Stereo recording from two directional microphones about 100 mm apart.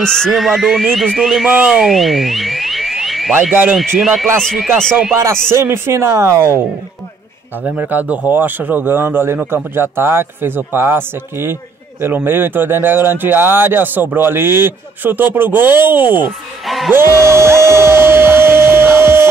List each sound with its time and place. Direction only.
0.0 s music: 5° left (ahead or behind)
1.5 s speech: 5° right (ahead or behind)
3.7 s music: centre (ahead or behind)
5.5 s speech: 25° right (ahead or behind)
7.6 s speech: 15° right (ahead or behind)
16.6 s music: centre (ahead or behind)
16.9 s speech: 25° right (ahead or behind)
17.6 s music: 25° right (ahead or behind)